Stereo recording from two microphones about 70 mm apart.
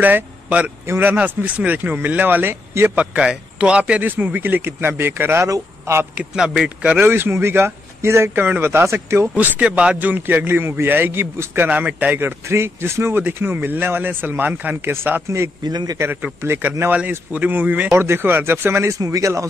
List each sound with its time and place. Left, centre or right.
0.0 s a man's voice: right
3.0 s a man's voice: centre; by 6.0 s right
6.3 s speech: centre
7.0 s speech: right
9.4 s a man's voice: centre
15.2 s speech: right
15.6 s a man's voice: right
16.4 s speech: right
17.3 s a man's voice: right
17.9 s speech: right
18.9 s a man's voice: right